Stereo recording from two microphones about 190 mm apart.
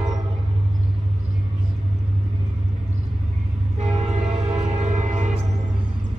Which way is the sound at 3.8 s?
35° right (ahead or behind).